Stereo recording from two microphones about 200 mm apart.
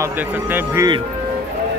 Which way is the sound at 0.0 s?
15° right (ahead or behind).